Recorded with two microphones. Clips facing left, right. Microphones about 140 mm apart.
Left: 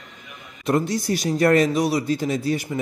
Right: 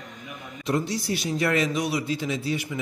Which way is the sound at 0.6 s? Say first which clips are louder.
Left 5 dB; 50° left (ahead or behind).